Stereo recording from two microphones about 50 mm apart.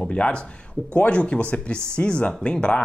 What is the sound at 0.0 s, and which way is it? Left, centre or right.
Speech, left.